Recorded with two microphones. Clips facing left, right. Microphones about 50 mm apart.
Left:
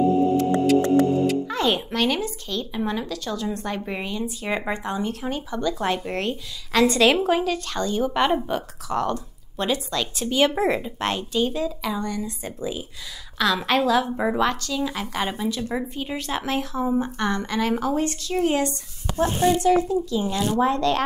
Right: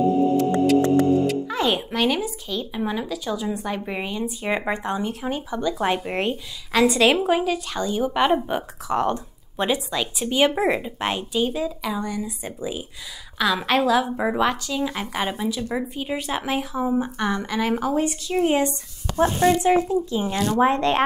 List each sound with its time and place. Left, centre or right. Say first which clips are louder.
0.4 s speech: right 1 dB; centre
8.5 s speech: right 2 dB; right
19.1 s speech: right 2 dB; right
19.6 s speech: even; right
20.3 s speech: right 3 dB; right